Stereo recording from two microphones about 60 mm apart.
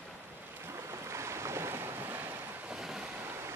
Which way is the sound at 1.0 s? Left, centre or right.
Right.